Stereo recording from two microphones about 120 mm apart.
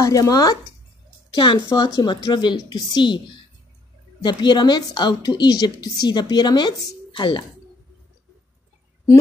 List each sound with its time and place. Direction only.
0.0 s a woman's voice: 30° left (ahead or behind)
1.3 s a woman's voice: 40° left (ahead or behind)
4.2 s a woman's voice: 40° left (ahead or behind)